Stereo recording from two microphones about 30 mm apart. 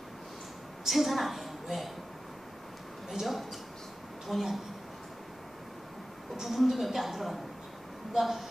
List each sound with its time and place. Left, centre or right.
0.8 s a woman's voice: centre
3.1 s speech: centre
6.4 s speech: centre